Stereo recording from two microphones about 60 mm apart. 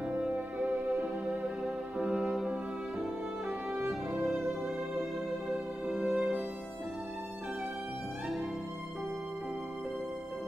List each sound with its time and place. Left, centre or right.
0.6 s music: right
2.0 s music: centre
3.4 s music: right
5.9 s music: centre